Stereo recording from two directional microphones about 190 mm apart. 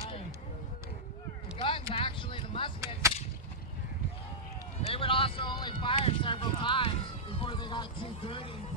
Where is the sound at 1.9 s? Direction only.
25° left (ahead or behind).